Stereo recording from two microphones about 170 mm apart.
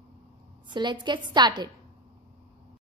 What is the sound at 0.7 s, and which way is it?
A woman's voice, 25° right (ahead or behind).